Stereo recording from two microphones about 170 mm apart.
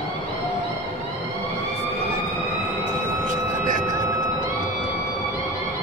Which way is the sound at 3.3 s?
50° right (ahead or behind).